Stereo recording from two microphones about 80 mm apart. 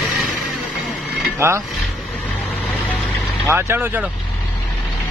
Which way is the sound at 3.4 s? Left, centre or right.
Right.